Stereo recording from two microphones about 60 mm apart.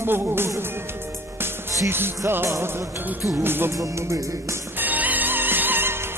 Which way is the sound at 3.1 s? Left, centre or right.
Right.